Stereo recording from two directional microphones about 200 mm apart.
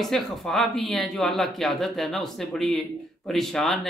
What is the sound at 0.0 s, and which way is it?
Speech, centre (ahead or behind).